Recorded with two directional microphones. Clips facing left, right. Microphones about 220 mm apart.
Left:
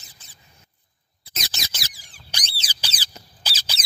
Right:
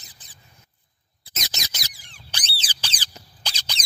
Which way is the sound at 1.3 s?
20° right (ahead or behind).